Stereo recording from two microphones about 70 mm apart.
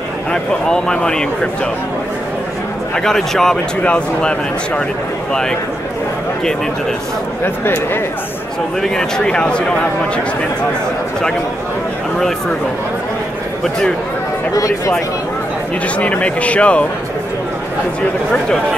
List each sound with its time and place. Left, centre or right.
0.3 s speech: centre
3.0 s speech: centre
7.4 s speech: left
8.8 s speech: centre
14.5 s speech: left
16.0 s speech: centre